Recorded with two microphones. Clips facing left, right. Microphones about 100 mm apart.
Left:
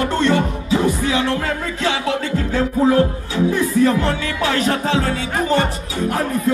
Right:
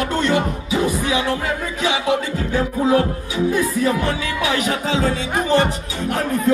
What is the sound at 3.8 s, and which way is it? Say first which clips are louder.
Music: left 3 dB; 15° right (ahead or behind).